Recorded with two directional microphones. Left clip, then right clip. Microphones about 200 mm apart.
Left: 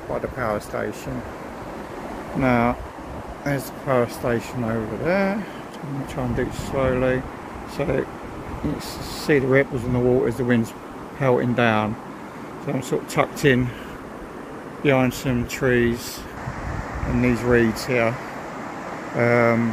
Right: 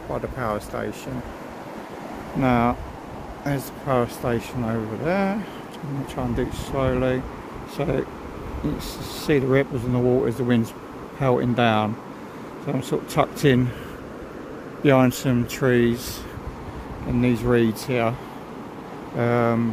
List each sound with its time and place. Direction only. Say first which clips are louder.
0.1 s speech: left 2 dB; 5° right (ahead or behind)
2.4 s speech: left 1 dB; 10° right (ahead or behind)
9.2 s speech: left 2 dB; 10° right (ahead or behind)
14.8 s speech: right 2 dB; 40° right (ahead or behind)
17.2 s speech: left 2 dB; 15° right (ahead or behind)
19.1 s speech: left 3 dB; 5° right (ahead or behind)